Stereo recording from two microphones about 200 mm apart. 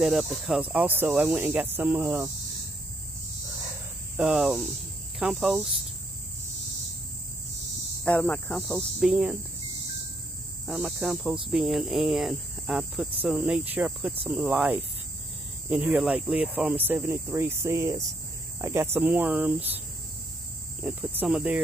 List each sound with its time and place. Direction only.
0.0 s speech: centre (ahead or behind)
4.2 s speech: 5° right (ahead or behind)
8.0 s speech: 5° left (ahead or behind)
10.7 s speech: centre (ahead or behind)
20.8 s speech: 10° right (ahead or behind)